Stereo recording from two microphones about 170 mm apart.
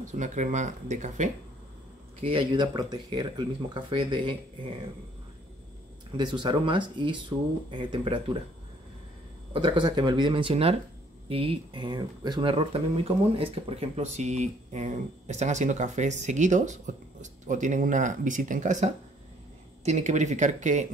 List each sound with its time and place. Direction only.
0.0 s speech: 45° right (ahead or behind)
2.2 s speech: 30° right (ahead or behind)
6.1 s speech: 25° right (ahead or behind)
9.5 s speech: 30° right (ahead or behind); by 20.9 s 45° right (ahead or behind)